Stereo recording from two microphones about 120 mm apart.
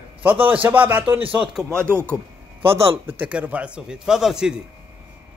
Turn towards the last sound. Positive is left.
turn(degrees=-5)  # may be behind; listen again after turning